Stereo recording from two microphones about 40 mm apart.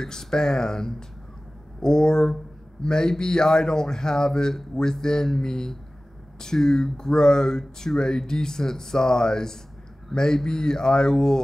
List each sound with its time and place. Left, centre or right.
0.0 s speech: centre